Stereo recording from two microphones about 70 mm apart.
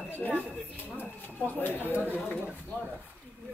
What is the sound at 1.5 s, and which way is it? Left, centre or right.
Speech, left.